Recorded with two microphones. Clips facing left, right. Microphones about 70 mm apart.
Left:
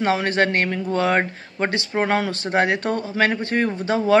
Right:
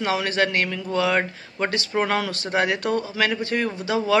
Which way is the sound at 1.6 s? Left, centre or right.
Left.